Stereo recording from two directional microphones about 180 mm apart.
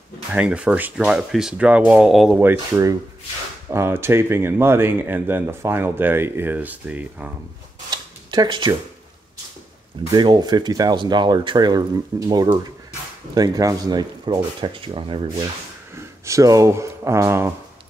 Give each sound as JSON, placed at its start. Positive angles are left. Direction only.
{"t": 0.3, "sound": "speech", "side_deg": -5}
{"t": 7.9, "sound": "a sound", "side_deg": -25}
{"t": 10.1, "sound": "speech", "side_deg": -25}
{"t": 16.3, "sound": "speech", "side_deg": -15}